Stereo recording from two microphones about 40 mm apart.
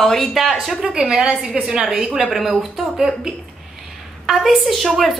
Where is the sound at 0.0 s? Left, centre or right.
Centre.